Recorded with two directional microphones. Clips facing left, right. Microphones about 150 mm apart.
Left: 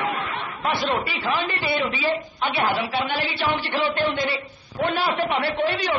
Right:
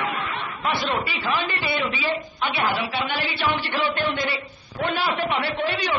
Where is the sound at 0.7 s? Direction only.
45° left (ahead or behind).